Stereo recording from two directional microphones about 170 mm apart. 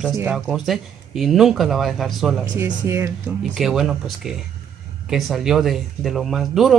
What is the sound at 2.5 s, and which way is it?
Speech, 15° right (ahead or behind).